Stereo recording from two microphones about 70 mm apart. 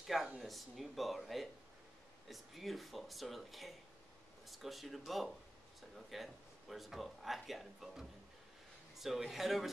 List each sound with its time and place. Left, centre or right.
0.0 s speech: centre